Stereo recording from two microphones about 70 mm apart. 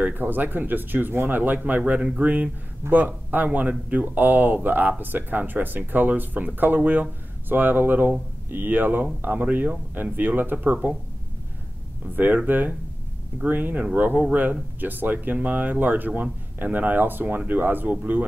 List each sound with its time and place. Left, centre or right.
0.0 s speech: right
12.2 s speech: right